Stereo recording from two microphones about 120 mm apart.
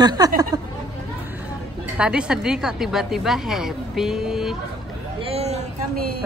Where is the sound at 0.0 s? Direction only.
30° right (ahead or behind).